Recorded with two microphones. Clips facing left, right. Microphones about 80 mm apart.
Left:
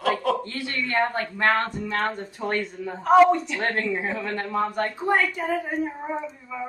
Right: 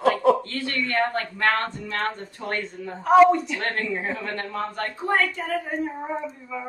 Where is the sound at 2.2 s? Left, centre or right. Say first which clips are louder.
Left 3 dB; centre.